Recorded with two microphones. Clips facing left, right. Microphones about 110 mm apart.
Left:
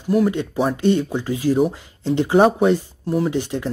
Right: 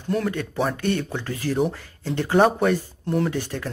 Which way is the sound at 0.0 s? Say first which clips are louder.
Left 6 dB; 10° left (ahead or behind).